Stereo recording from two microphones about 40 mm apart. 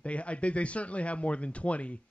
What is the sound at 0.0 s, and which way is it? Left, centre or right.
A man's voice, left.